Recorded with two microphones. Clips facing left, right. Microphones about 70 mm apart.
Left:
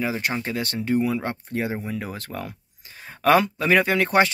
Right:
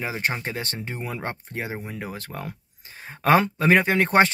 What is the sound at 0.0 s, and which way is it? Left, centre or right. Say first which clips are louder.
Speech: left 2 dB; right.